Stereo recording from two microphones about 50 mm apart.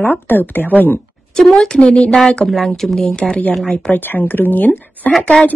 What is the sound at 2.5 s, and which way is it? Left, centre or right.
Speech, centre.